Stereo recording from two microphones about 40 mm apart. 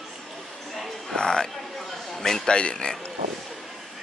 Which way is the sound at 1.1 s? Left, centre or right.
Centre.